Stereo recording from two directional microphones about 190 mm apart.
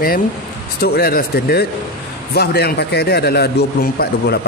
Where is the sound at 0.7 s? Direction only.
55° left (ahead or behind).